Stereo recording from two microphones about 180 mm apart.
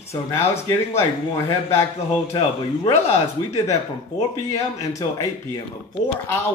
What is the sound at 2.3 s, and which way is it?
Speech, 30° left (ahead or behind).